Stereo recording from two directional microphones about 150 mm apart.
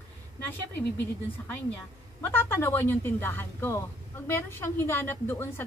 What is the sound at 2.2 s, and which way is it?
A woman's voice, 15° left (ahead or behind).